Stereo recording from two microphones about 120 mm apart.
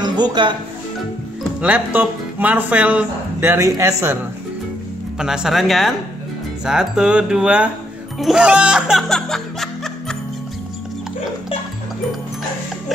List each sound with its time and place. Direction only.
0.0 s music: 35° right (ahead or behind)
1.6 s speech: 15° right (ahead or behind)
5.2 s speech: 5° right (ahead or behind)